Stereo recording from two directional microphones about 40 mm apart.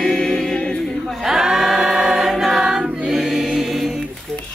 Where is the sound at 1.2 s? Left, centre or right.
Centre.